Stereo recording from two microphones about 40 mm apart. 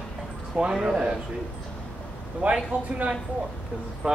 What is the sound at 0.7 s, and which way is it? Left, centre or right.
Speech, centre.